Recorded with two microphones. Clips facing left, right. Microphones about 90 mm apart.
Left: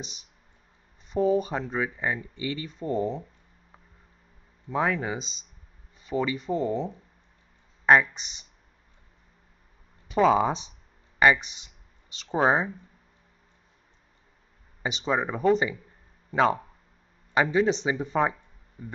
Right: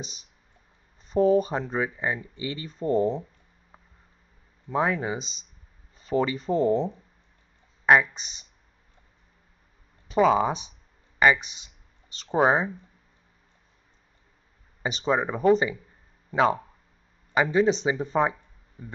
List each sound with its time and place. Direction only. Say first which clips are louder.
1.0 s speech: right 3 dB; 40° right (ahead or behind)
1.5 s speech: right 1 dB; 25° right (ahead or behind)
4.7 s speech: right 1 dB; 20° right (ahead or behind)
5.9 s speech: right 3 dB; 40° right (ahead or behind)
7.8 s a sound: even; 5° right (ahead or behind)
10.1 s speech: even; 5° right (ahead or behind)
15.0 s speech: right 2 dB; 10° right (ahead or behind)
17.6 s speech: right 2 dB; 20° right (ahead or behind)